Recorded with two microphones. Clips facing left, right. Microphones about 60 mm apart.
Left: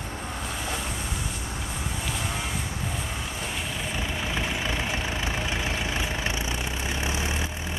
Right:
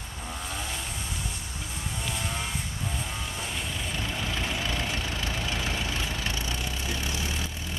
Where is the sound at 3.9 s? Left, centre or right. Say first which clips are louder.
Left 2 dB; centre.